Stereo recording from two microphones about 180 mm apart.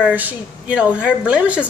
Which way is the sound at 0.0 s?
10° right (ahead or behind).